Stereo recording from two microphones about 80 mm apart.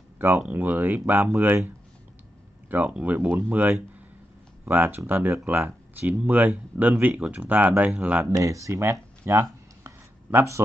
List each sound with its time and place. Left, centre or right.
0.5 s speech: right
2.7 s speech: centre
8.3 s speech: right
9.2 s chopping: right